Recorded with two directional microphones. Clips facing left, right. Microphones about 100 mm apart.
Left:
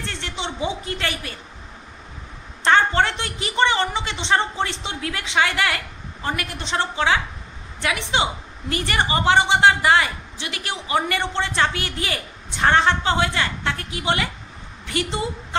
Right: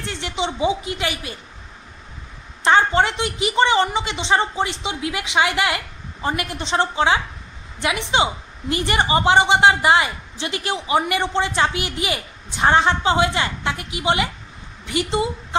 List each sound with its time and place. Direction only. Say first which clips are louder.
0.0 s a woman's voice: right 4 dB; 15° right (ahead or behind)
2.6 s a woman's voice: right 1 dB; 15° right (ahead or behind)